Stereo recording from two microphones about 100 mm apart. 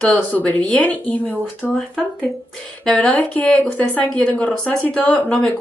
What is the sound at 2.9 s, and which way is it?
Speech, 15° left (ahead or behind).